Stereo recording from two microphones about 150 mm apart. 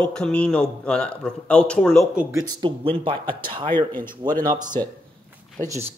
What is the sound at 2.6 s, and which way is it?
Speech, 35° right (ahead or behind).